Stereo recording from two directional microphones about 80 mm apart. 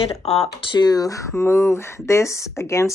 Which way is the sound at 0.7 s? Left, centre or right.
Left.